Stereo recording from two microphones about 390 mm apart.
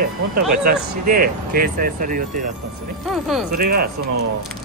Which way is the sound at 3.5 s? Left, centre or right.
Right.